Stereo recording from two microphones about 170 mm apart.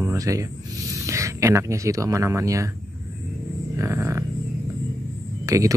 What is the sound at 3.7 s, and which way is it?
Speech, 15° right (ahead or behind).